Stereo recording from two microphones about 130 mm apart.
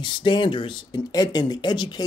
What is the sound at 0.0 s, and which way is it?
Speech, 40° left (ahead or behind).